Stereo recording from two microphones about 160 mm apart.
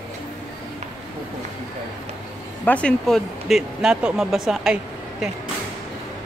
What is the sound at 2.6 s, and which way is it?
Speech, 5° left (ahead or behind).